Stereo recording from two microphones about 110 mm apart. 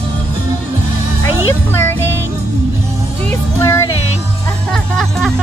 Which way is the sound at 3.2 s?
20° left (ahead or behind).